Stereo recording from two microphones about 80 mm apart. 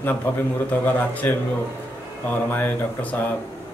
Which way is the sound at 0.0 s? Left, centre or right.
Left.